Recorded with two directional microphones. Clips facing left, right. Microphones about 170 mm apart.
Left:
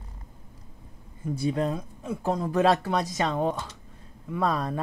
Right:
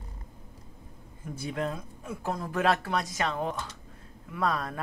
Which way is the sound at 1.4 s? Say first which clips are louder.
Left 5 dB; 30° left (ahead or behind).